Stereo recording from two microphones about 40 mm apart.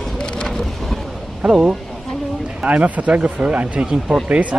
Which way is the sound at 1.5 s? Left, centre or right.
Centre.